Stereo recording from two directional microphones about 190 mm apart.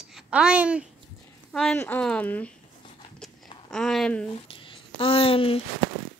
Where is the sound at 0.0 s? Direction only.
5° right (ahead or behind).